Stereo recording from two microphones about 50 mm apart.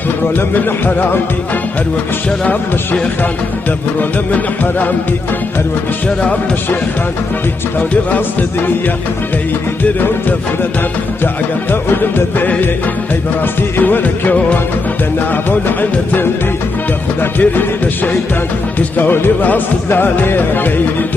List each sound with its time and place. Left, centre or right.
0.7 s music: left
7.9 s music: left
11.7 s music: left
15.8 s music: left
17.4 s music: left